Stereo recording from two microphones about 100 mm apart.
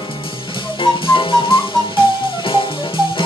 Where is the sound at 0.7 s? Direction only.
60° left (ahead or behind).